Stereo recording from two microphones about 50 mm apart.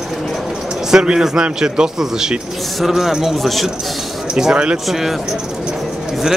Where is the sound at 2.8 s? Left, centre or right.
Centre.